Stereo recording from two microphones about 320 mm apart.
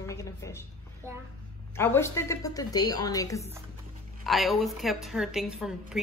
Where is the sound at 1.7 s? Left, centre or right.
Centre.